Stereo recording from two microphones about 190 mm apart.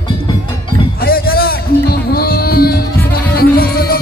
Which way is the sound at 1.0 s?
50° left (ahead or behind).